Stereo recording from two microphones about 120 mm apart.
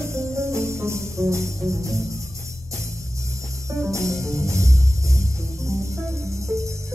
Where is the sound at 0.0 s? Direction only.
25° right (ahead or behind).